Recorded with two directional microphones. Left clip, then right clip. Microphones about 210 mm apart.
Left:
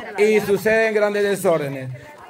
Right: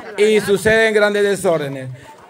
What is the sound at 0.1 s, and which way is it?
A man's voice, 15° right (ahead or behind).